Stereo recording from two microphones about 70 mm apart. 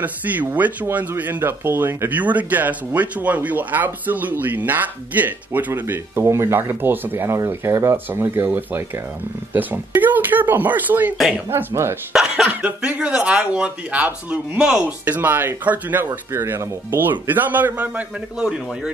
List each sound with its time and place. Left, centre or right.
0.0 s speech: right
7.2 s speech: right
8.1 s speech: right
11.5 s speech: right
12.1 s speech: centre
12.4 s speech: right
16.3 s speech: right